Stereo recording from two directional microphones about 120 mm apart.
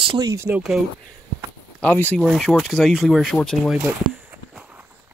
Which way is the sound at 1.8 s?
15° left (ahead or behind).